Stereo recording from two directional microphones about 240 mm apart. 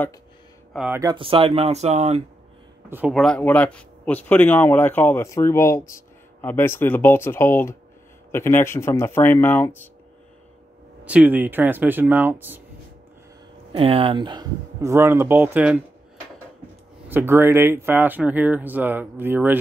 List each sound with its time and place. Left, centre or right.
0.7 s speech: centre; by 2.2 s right
2.9 s speech: centre
11.1 s speech: centre
13.7 s speech: right; by 15.8 s centre
17.1 s speech: centre